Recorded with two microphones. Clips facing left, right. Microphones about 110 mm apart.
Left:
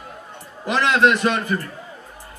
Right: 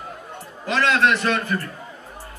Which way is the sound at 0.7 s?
20° left (ahead or behind).